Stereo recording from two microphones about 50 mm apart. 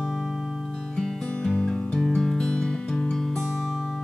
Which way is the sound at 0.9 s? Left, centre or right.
Centre.